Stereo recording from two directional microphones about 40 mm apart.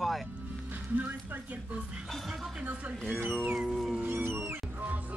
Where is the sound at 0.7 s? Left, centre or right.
Right.